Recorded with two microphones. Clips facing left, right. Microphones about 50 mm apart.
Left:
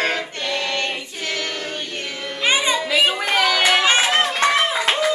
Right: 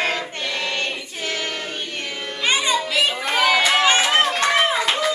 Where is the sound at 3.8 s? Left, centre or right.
Centre.